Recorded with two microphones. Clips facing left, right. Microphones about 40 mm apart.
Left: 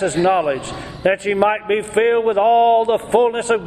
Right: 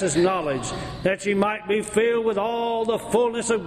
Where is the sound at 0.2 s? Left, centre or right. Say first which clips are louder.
Left 6 dB; left.